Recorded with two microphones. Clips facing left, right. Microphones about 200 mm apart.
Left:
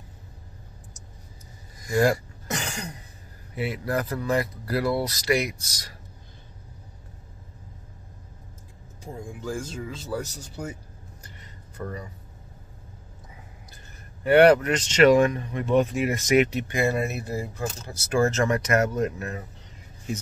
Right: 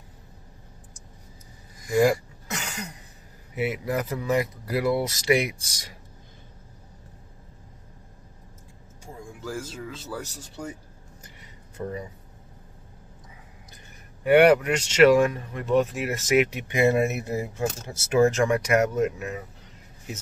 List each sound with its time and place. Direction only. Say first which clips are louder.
1.9 s speech: right 1 dB; 5° right (ahead or behind)
2.6 s a sound: left 2 dB; 35° left (ahead or behind)
3.5 s speech: right 1 dB; 10° right (ahead or behind)
9.4 s speech: left 1 dB; 5° right (ahead or behind)
11.7 s speech: right 2 dB; 20° right (ahead or behind)
14.2 s speech: even; 10° right (ahead or behind)
16.6 s speech: right 4 dB; 20° right (ahead or behind)